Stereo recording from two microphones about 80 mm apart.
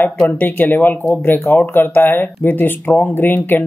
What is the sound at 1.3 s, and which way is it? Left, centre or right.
Speech, left.